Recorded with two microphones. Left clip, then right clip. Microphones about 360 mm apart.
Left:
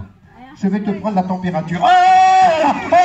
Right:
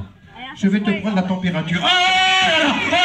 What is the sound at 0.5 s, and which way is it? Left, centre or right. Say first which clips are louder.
Speech: right 1 dB; centre.